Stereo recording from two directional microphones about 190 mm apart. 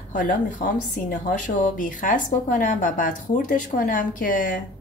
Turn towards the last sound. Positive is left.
turn(degrees=45)  # may be behind; listen again after turning